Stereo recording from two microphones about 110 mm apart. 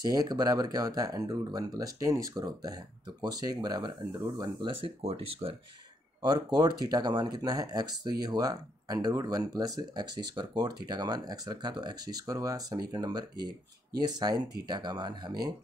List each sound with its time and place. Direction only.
0.0 s speech: 35° right (ahead or behind)
5.0 s speech: 60° right (ahead or behind)
6.2 s speech: 35° right (ahead or behind)